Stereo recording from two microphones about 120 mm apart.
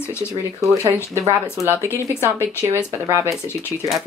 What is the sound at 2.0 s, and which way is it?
Speech, 20° right (ahead or behind).